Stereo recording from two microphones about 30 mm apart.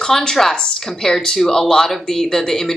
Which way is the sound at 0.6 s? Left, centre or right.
Left.